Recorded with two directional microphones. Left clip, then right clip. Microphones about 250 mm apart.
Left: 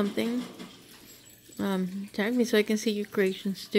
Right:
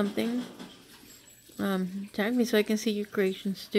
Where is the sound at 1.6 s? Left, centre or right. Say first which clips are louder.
Even; centre.